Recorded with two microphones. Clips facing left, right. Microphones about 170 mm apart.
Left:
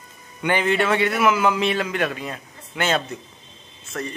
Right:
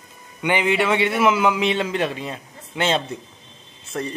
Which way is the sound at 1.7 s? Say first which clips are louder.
Right 1 dB; 25° right (ahead or behind).